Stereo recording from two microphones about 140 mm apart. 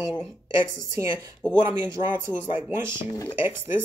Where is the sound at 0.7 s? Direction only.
25° right (ahead or behind).